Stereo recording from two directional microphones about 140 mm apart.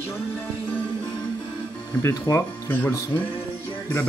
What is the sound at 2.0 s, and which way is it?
Speech, 20° left (ahead or behind).